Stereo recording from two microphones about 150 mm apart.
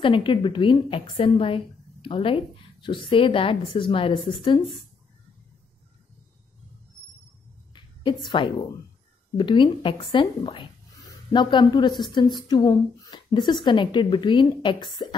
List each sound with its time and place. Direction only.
0.0 s a woman's voice: 35° left (ahead or behind)
7.7 s a sound: 30° left (ahead or behind)
9.4 s a woman's voice: 35° left (ahead or behind)